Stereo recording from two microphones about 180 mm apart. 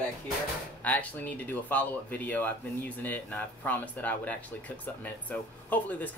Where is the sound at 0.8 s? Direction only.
10° left (ahead or behind).